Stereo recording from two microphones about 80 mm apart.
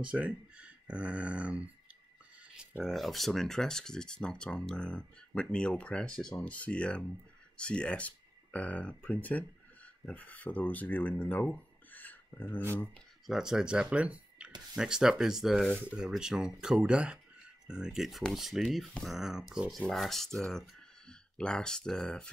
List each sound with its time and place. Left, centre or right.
0.1 s speech: centre
2.5 s a sound: centre
2.8 s speech: centre; by 12.6 s left
13.3 s speech: centre